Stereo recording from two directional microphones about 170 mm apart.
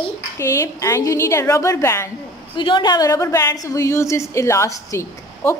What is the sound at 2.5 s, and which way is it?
A woman's voice, 30° left (ahead or behind).